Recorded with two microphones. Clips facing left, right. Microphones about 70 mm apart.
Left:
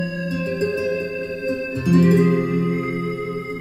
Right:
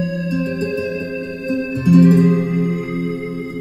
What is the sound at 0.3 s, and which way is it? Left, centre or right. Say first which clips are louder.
Music: right 3 dB; right.